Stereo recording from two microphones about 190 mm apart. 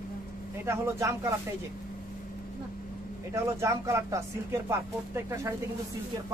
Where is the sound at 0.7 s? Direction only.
15° right (ahead or behind).